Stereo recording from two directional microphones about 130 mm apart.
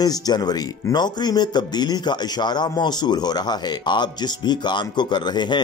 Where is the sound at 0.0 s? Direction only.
30° left (ahead or behind).